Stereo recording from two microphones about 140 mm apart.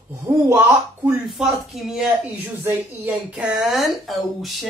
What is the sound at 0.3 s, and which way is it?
Speech, 20° right (ahead or behind).